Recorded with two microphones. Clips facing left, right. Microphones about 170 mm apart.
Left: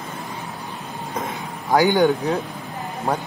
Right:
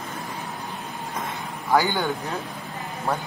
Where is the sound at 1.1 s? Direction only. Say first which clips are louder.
Left 5 dB; 20° left (ahead or behind).